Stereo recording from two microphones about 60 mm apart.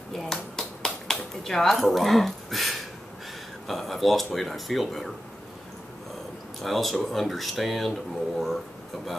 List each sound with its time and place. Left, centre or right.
0.1 s a sound: centre
3.6 s speech: centre
6.6 s speech: centre